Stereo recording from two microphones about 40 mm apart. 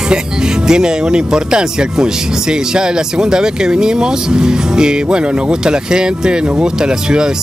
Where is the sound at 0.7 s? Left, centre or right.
Centre.